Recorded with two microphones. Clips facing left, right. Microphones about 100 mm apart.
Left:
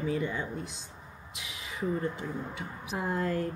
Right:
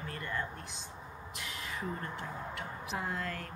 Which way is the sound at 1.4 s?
10° left (ahead or behind).